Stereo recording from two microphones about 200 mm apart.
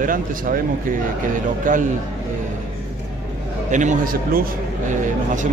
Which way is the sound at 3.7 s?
40° right (ahead or behind).